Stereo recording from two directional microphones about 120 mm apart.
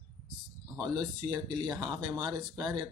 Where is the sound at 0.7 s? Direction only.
35° right (ahead or behind).